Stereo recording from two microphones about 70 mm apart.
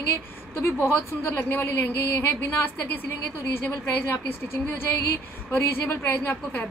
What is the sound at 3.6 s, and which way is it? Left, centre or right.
A woman's voice, left.